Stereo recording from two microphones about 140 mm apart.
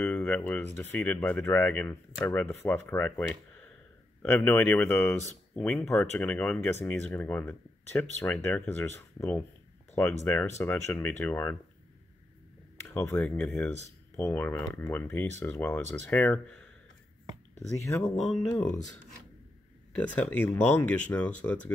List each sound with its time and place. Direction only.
0.0 s speech: 15° left (ahead or behind)
12.8 s speech: 15° left (ahead or behind)
17.8 s speech: 20° left (ahead or behind)
20.0 s speech: 10° left (ahead or behind)